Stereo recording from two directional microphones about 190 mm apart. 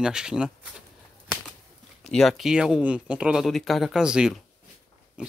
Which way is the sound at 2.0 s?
Centre (ahead or behind).